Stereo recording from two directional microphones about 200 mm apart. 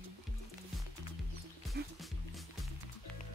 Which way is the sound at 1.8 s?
55° right (ahead or behind).